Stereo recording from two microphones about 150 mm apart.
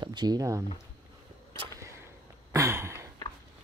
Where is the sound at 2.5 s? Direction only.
20° right (ahead or behind).